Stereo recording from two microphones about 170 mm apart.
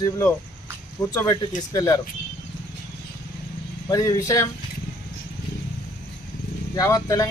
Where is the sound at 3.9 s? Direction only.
20° left (ahead or behind).